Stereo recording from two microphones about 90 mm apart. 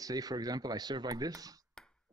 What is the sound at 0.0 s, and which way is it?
Speech, 45° right (ahead or behind).